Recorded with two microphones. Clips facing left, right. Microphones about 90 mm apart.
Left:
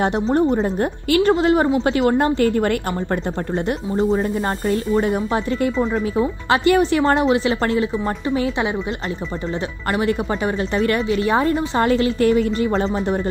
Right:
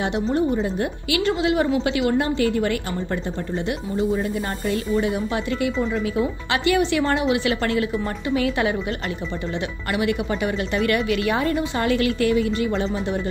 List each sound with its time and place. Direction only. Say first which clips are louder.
0.0 s a woman's voice: left 4 dB; 45° left (ahead or behind)
4.6 s a woman's voice: left 3 dB; 45° left (ahead or behind); by 8.7 s 25° left (ahead or behind)
9.9 s a woman's voice: left 2 dB; 35° left (ahead or behind)